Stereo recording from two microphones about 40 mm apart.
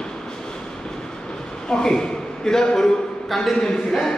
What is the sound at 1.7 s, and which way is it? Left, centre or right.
A man's voice, centre.